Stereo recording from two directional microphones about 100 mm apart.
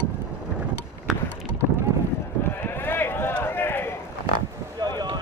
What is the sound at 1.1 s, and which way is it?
Boat, 5° right (ahead or behind).